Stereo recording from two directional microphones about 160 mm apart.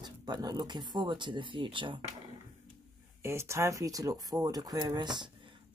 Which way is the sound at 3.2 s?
15° right (ahead or behind).